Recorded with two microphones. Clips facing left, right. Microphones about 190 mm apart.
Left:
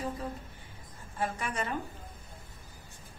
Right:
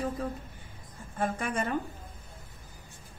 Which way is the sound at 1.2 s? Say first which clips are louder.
Right 3 dB; 50° right (ahead or behind).